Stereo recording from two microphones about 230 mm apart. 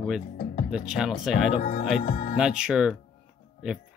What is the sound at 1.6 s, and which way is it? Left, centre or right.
Speech, left.